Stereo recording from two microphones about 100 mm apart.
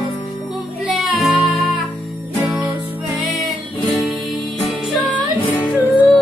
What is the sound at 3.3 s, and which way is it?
Music, centre (ahead or behind).